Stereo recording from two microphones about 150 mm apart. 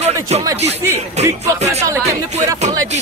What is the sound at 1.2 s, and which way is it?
Music, 50° right (ahead or behind).